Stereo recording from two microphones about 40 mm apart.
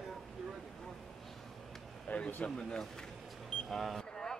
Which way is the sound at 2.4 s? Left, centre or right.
Left.